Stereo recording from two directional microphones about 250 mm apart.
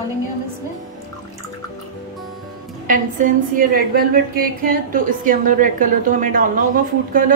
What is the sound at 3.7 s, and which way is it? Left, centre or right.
A woman's voice, right.